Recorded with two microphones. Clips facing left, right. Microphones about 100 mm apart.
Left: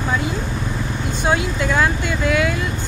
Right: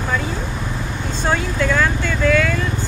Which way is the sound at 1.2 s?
15° left (ahead or behind).